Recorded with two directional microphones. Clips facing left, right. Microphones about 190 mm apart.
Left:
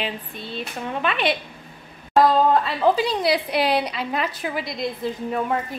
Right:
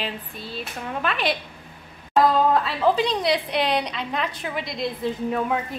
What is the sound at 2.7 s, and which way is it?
A woman's voice, 5° left (ahead or behind).